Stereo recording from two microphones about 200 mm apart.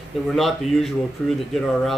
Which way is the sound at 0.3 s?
Centre (ahead or behind).